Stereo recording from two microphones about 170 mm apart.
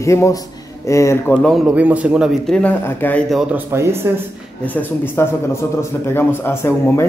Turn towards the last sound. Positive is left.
turn(degrees=15)  # may be behind; listen again after turning